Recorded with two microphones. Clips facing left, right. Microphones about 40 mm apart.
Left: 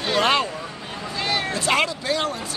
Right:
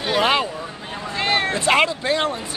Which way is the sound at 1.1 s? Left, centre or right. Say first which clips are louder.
Right 4 dB; right.